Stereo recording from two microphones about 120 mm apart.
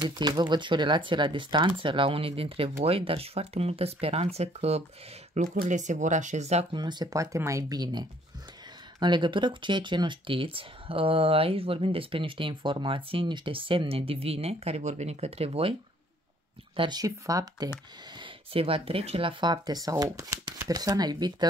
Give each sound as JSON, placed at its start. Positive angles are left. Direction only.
{"t": 0.0, "sound": "speech", "side_deg": -40}
{"t": 5.3, "sound": "speech", "side_deg": -80}
{"t": 6.7, "sound": "speech", "side_deg": -40}
{"t": 16.7, "sound": "speech", "side_deg": -45}
{"t": 17.0, "sound": "speech", "side_deg": -30}
{"t": 18.1, "sound": "speech", "side_deg": -45}
{"t": 19.4, "sound": "speech", "side_deg": -35}